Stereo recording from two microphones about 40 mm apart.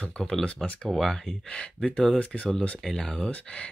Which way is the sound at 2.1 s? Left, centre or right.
Left.